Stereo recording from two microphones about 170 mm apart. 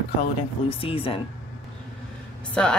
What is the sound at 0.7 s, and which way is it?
Speech, 35° left (ahead or behind).